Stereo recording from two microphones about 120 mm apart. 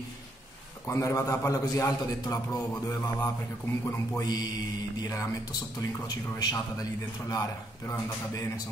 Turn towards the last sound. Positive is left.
turn(degrees=30)  # may be behind; listen again after turning